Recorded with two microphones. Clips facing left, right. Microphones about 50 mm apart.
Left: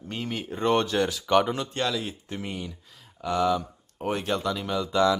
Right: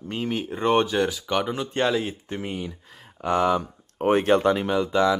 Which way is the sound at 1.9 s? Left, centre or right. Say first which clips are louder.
Right 5 dB; right.